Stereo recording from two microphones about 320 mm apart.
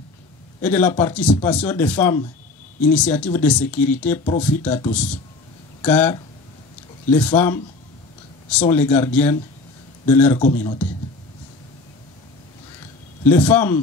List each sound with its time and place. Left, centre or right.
0.6 s speech: centre
4.2 s speech: centre
5.8 s speech: centre
8.6 s speech: centre
10.4 s speech: left
13.2 s speech: centre